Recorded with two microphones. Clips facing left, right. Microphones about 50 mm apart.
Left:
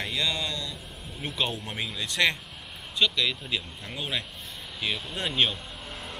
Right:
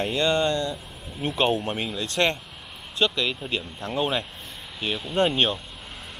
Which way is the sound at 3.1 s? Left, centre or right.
Right.